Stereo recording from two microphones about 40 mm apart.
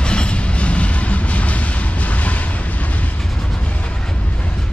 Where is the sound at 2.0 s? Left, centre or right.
Left.